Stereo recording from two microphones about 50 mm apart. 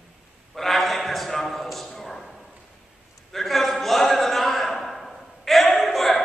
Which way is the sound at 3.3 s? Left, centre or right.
Centre.